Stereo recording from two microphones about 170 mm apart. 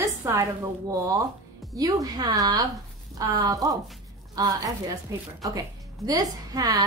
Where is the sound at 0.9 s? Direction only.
20° right (ahead or behind).